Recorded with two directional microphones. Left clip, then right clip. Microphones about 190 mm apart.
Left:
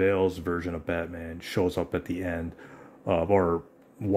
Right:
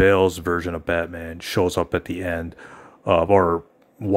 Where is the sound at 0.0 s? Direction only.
25° right (ahead or behind).